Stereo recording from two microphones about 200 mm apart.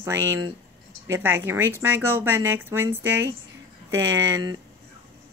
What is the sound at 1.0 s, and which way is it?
Speech, 10° right (ahead or behind).